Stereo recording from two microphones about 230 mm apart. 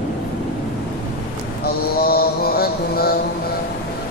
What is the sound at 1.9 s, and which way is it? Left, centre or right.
Mantra, left.